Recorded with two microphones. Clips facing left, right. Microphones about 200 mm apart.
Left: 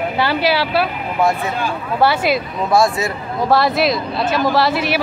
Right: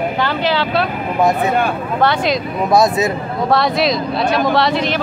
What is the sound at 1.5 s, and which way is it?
Speech, 60° right (ahead or behind).